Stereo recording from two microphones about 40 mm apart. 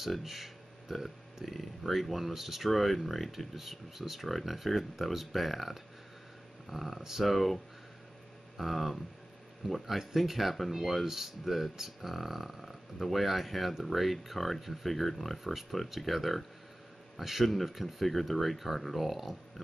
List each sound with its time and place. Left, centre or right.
0.0 s speech: centre
7.2 s speech: centre